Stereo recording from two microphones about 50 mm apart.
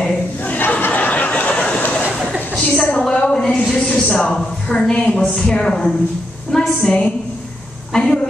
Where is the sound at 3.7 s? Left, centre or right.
Centre.